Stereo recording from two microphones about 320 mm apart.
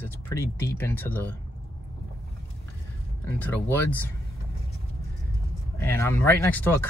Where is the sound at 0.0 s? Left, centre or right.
Centre.